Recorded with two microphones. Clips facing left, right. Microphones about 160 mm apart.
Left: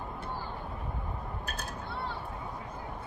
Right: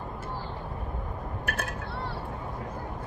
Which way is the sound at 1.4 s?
75° right (ahead or behind).